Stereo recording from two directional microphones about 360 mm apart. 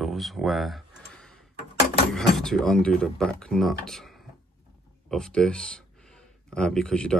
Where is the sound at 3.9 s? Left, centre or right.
Centre.